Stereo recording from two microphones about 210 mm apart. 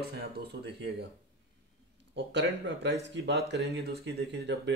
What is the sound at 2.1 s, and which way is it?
Speech, 55° right (ahead or behind).